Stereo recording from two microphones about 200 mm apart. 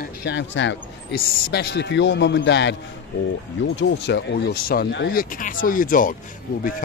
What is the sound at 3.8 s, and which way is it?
Speech, 60° left (ahead or behind).